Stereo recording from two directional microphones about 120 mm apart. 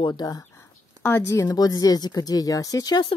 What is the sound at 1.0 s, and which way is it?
Speech, 20° left (ahead or behind).